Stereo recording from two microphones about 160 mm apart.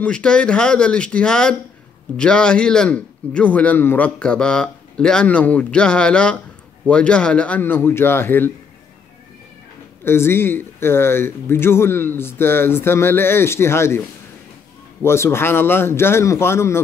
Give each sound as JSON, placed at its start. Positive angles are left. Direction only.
{"t": 0.0, "sound": "a man's voice", "side_deg": 5}
{"t": 10.0, "sound": "speech", "side_deg": 15}
{"t": 15.0, "sound": "speech", "side_deg": 15}